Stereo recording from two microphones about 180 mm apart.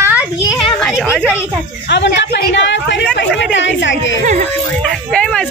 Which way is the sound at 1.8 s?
75° left (ahead or behind).